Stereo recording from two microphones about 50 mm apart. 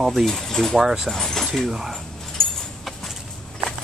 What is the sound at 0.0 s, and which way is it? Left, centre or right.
Speech, centre.